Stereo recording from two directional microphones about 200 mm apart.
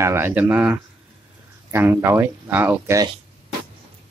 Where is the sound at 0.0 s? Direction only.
10° right (ahead or behind).